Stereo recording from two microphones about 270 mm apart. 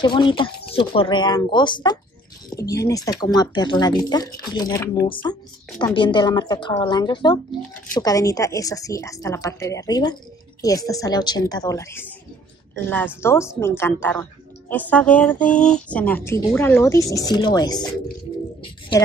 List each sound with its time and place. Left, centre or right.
0.0 s speech: centre